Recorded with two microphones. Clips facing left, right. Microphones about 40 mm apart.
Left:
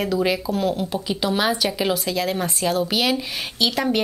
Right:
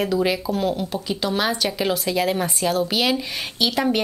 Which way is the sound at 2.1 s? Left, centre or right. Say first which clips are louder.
Right 2 dB; centre.